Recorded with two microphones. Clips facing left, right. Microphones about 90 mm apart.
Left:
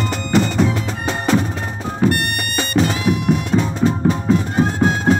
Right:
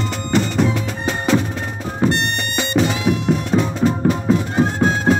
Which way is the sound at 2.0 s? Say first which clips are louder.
Even; 25° right (ahead or behind).